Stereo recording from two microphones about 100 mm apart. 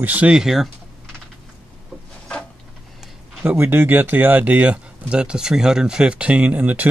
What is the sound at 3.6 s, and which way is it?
Speech, 20° right (ahead or behind).